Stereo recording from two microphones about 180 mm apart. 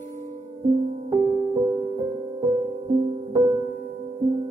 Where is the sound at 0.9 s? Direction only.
35° right (ahead or behind).